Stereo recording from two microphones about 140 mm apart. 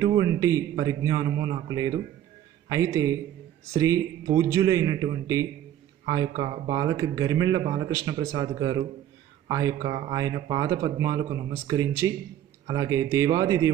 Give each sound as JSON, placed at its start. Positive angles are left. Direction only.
{"t": 0.0, "sound": "a man's voice", "side_deg": -25}
{"t": 9.8, "sound": "speech", "side_deg": -60}
{"t": 10.2, "sound": "a man's voice", "side_deg": -25}